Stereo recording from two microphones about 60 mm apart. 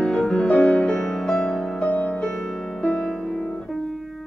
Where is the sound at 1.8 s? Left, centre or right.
Left.